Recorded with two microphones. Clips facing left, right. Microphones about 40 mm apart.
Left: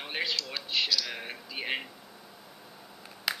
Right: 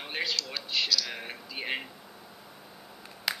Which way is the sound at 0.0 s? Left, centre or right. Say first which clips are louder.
Even; centre.